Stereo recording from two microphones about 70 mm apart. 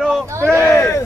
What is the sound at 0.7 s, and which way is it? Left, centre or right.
Speech, left.